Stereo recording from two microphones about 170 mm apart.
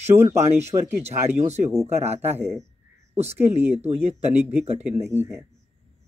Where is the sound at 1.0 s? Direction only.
40° right (ahead or behind).